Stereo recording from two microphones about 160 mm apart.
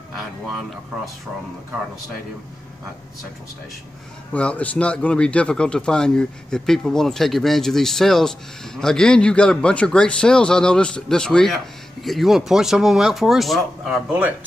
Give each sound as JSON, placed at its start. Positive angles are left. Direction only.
{"t": 4.3, "sound": "a man's voice", "side_deg": 10}